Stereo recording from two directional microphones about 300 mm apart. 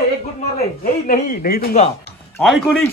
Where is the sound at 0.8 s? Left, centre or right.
Left.